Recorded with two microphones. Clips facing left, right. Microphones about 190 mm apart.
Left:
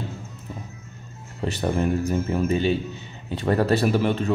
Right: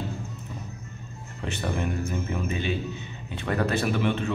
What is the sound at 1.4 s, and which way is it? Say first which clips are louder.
Speech: left 6 dB; 35° left (ahead or behind).